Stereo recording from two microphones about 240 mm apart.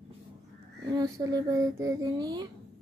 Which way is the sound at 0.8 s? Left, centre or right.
Centre.